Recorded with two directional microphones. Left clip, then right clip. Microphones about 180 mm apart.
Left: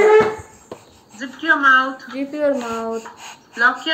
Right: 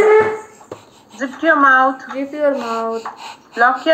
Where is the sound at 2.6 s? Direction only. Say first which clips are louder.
Right 4 dB; 15° left (ahead or behind).